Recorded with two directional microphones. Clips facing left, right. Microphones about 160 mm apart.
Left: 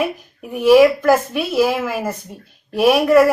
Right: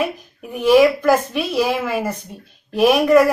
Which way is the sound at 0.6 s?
10° left (ahead or behind).